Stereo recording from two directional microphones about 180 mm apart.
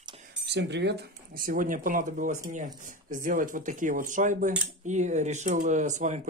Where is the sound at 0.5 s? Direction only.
75° right (ahead or behind).